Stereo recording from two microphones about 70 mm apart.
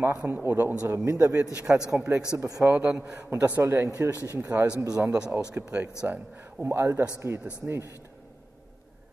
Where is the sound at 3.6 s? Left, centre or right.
Right.